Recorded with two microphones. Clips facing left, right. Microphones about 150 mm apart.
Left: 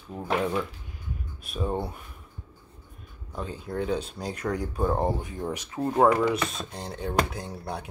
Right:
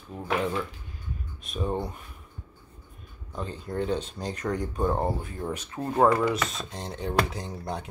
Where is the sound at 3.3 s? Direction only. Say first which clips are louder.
Even; 5° left (ahead or behind).